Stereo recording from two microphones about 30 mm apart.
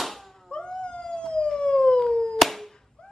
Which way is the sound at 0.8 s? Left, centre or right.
Left.